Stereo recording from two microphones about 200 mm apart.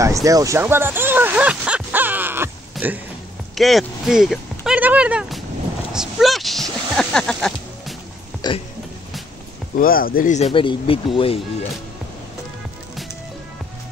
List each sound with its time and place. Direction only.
0.0 s a sound: 15° right (ahead or behind)
3.5 s speech: centre (ahead or behind)
8.4 s speech: 20° left (ahead or behind)
9.8 s speech: 45° left (ahead or behind); by 11.3 s 25° left (ahead or behind)